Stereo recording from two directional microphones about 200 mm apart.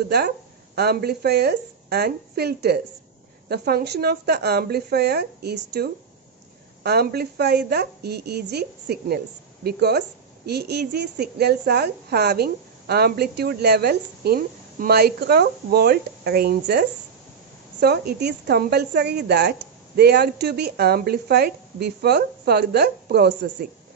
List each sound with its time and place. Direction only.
0.7 s a woman's voice: 55° right (ahead or behind)